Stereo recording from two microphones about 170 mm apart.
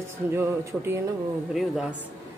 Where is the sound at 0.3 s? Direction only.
15° right (ahead or behind).